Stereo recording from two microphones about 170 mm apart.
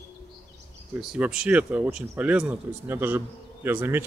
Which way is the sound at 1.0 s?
5° right (ahead or behind).